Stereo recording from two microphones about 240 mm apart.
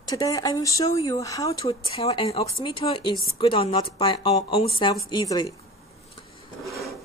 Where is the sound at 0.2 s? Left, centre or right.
Centre.